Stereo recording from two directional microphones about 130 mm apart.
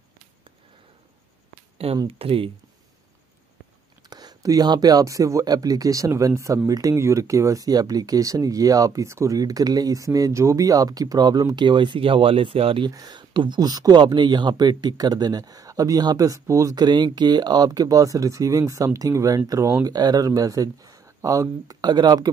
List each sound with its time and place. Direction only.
2.0 s speech: 45° right (ahead or behind)
4.1 s speech: 30° right (ahead or behind)
12.9 s speech: 30° right (ahead or behind)